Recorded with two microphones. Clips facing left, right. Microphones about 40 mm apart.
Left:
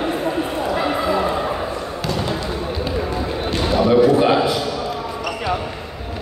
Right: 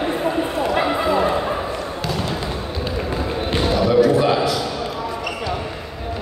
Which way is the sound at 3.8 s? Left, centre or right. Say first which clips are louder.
Left 2 dB; left.